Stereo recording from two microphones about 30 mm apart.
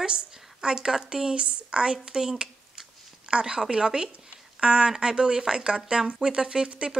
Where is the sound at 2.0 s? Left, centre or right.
Centre.